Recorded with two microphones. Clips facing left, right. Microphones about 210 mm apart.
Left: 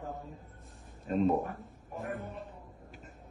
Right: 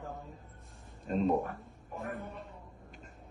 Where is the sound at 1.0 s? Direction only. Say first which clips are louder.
Left 2 dB; centre (ahead or behind).